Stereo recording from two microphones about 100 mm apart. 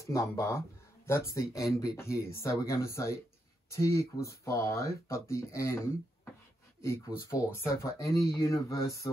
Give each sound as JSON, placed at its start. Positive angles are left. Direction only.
{"t": 0.0, "sound": "speech", "side_deg": 30}